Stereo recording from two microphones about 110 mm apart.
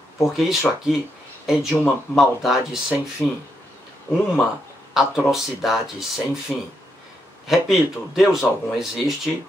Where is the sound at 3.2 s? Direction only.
10° left (ahead or behind).